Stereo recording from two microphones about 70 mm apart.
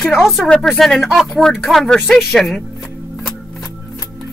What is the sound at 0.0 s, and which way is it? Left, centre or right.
Speech, centre.